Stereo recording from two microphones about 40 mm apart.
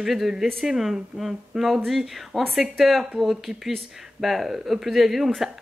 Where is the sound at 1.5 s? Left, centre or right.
Centre.